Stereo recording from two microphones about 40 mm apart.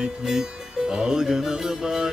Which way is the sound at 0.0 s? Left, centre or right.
Centre.